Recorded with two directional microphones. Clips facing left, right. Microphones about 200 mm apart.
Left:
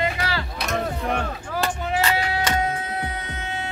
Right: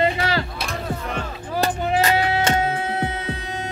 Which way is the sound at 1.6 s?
40° right (ahead or behind).